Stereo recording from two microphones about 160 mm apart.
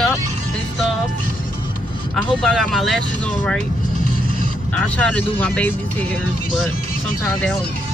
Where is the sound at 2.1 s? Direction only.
5° left (ahead or behind).